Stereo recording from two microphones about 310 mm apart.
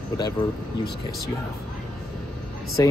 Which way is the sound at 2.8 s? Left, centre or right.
Centre.